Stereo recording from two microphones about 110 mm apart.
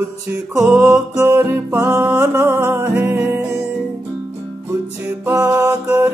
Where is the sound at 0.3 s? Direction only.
20° right (ahead or behind).